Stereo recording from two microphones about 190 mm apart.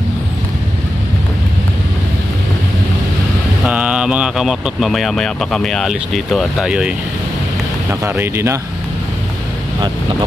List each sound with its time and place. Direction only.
3.6 s speech: 5° right (ahead or behind)
7.9 s speech: 10° right (ahead or behind)